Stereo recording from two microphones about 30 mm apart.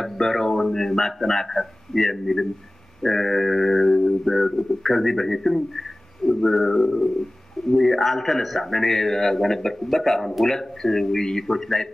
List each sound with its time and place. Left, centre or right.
0.0 s a man's voice: centre
3.0 s a sound: centre
10.5 s a man's voice: centre